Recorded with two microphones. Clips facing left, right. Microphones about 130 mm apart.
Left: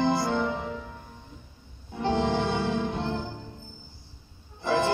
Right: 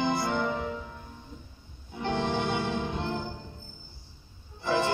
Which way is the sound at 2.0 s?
25° left (ahead or behind).